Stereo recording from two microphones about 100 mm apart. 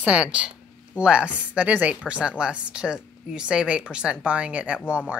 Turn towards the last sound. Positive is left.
turn(degrees=-15)  # may be behind; listen again after turning